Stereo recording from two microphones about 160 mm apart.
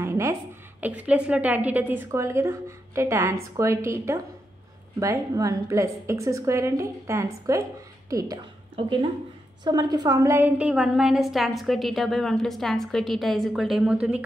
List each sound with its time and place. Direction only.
0.0 s a woman's voice: 15° right (ahead or behind)
9.7 s a woman's voice: 25° right (ahead or behind); by 14.2 s 5° right (ahead or behind)